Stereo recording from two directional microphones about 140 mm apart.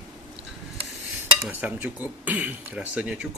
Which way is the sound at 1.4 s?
10° right (ahead or behind).